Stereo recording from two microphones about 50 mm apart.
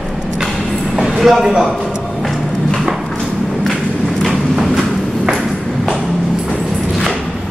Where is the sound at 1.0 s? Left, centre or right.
Centre.